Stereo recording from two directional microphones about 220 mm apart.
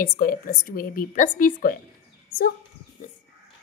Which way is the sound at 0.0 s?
40° left (ahead or behind).